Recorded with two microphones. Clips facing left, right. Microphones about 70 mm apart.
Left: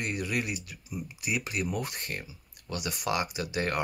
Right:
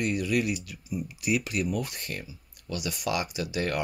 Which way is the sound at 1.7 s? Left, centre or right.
Left.